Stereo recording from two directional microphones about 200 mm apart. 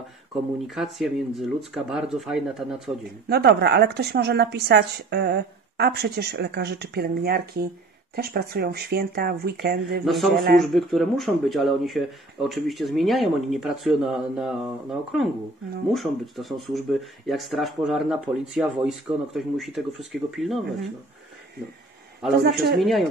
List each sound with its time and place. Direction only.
0.7 s speech: centre (ahead or behind)
3.3 s a woman's voice: 55° right (ahead or behind)
10.0 s speech: centre (ahead or behind)
22.4 s a woman's voice: 55° right (ahead or behind)
22.8 s speech: centre (ahead or behind)